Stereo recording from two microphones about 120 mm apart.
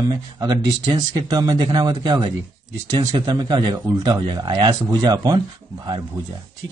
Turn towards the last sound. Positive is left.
turn(degrees=-40)  # may be behind; listen again after turning